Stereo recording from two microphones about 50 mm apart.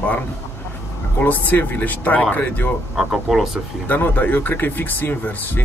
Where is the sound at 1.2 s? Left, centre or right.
Left.